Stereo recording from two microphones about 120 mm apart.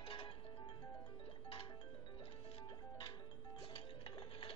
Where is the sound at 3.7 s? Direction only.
50° left (ahead or behind).